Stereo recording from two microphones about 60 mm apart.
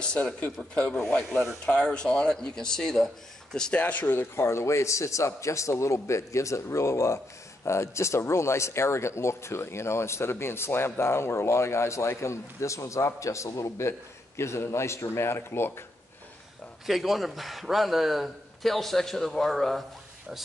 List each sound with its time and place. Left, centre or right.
0.0 s a man's voice: centre
1.3 s a man's voice: centre
1.7 s speech: centre
3.8 s a man's voice: left
4.2 s a man's voice: left
16.8 s a man's voice: centre